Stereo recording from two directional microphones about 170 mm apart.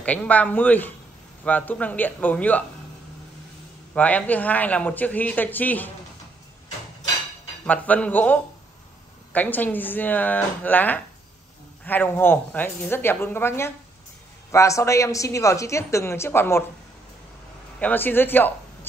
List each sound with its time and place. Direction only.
0.0 s speech: 10° left (ahead or behind)
3.9 s speech: 10° left (ahead or behind)
7.6 s speech: 10° left (ahead or behind)
17.7 s speech: 10° left (ahead or behind)